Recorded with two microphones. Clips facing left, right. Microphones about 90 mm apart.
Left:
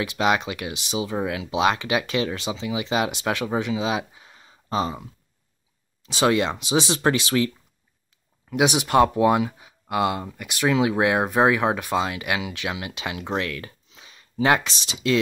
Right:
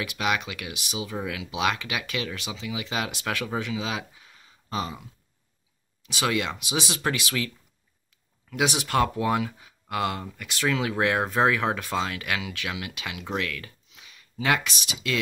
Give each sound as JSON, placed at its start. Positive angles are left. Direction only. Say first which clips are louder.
{"t": 0.0, "sound": "speech", "louder": "left 5 dB", "side_deg": 25}
{"t": 6.0, "sound": "speech", "louder": "left 6 dB", "side_deg": 30}
{"t": 8.5, "sound": "speech", "louder": "left 5 dB", "side_deg": 20}